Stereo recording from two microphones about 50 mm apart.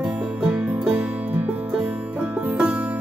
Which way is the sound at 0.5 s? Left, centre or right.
Right.